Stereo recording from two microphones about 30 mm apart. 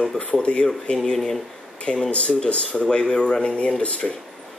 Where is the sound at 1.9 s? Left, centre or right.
Left.